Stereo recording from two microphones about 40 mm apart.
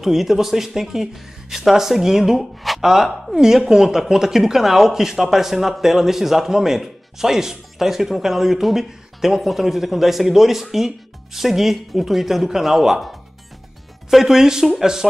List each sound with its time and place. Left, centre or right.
0.0 s speech: centre
14.1 s speech: centre